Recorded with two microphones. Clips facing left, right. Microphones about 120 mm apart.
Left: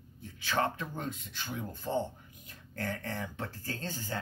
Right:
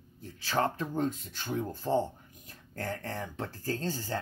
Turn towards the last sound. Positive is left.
turn(degrees=-35)  # may be behind; listen again after turning